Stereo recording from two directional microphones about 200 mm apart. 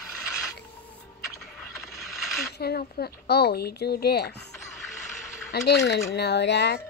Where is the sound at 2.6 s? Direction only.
50° left (ahead or behind).